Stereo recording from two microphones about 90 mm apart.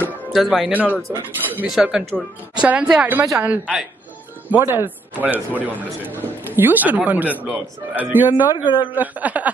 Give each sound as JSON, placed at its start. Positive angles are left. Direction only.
{"t": 0.3, "sound": "speech", "side_deg": 0}
{"t": 0.7, "sound": "a woman's voice", "side_deg": -15}
{"t": 1.7, "sound": "a woman's voice", "side_deg": -5}